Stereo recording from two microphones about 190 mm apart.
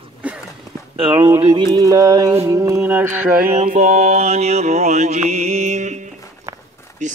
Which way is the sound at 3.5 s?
40° right (ahead or behind).